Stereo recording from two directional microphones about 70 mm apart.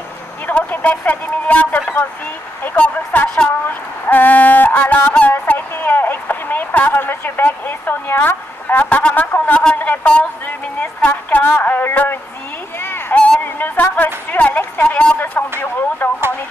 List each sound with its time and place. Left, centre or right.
0.5 s speech: left
13.1 s a sound: centre
13.4 s a woman's voice: left